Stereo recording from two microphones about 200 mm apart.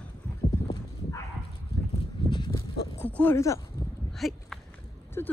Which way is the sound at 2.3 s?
25° left (ahead or behind).